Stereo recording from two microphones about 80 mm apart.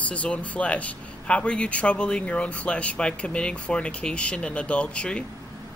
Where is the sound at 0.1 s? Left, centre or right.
Centre.